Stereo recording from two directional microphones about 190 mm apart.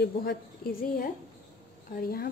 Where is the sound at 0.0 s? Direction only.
55° left (ahead or behind).